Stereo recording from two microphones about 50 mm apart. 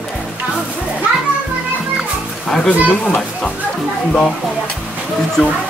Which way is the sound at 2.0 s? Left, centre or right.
Centre.